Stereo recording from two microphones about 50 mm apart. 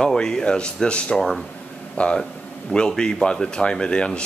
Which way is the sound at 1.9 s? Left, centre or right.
Centre.